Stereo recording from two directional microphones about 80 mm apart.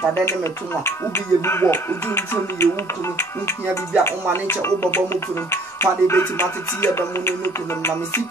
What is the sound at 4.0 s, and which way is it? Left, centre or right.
Speech, left.